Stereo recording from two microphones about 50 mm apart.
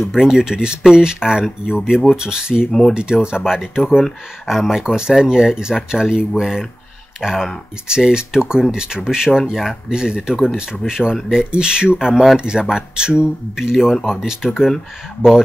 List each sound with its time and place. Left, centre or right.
0.1 s speech: centre
6.4 s speech: centre
11.5 s speech: centre